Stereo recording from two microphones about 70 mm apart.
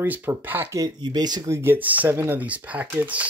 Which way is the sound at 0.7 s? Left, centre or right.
Right.